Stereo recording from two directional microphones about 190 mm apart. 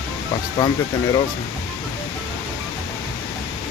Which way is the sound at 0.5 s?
20° left (ahead or behind).